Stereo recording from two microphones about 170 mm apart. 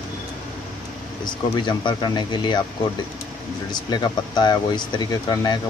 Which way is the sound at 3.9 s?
25° left (ahead or behind).